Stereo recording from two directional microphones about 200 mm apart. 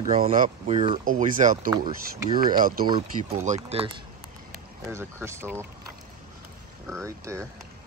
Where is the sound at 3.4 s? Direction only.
35° right (ahead or behind).